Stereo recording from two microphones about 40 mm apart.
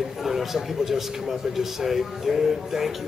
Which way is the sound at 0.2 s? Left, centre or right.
Centre.